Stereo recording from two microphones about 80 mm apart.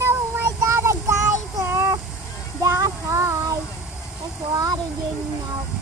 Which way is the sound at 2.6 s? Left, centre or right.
Right.